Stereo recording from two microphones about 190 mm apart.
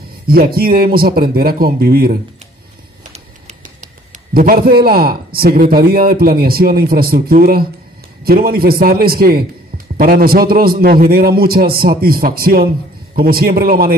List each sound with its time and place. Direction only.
0.3 s a man's voice: 50° right (ahead or behind)
3.1 s a sound: 35° right (ahead or behind)
4.3 s a man's voice: 50° right (ahead or behind)